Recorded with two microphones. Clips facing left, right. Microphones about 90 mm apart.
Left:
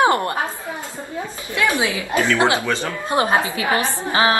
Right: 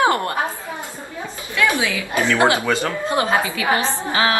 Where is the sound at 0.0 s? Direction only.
25° left (ahead or behind).